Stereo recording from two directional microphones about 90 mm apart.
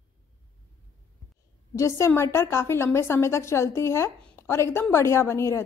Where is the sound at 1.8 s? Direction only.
30° left (ahead or behind).